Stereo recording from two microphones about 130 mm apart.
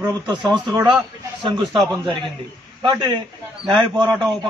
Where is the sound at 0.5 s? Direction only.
35° right (ahead or behind).